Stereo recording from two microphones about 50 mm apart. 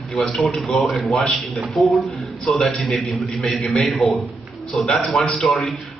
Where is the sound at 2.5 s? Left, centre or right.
Centre.